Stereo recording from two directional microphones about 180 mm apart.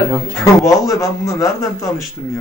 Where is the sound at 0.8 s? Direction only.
15° left (ahead or behind).